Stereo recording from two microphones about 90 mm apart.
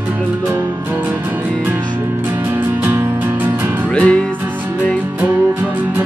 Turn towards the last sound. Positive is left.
turn(degrees=10)  # may be behind; listen again after turning